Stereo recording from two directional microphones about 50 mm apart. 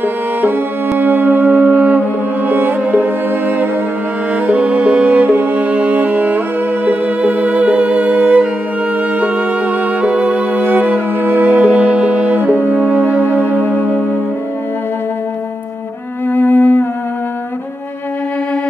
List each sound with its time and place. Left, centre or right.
0.0 s music: right
4.5 s music: right
13.6 s music: left
16.3 s music: left